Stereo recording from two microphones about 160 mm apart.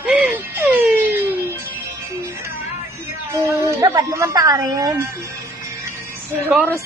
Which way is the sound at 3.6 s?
20° right (ahead or behind).